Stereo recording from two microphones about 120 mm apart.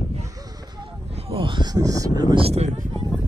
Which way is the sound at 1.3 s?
45° right (ahead or behind).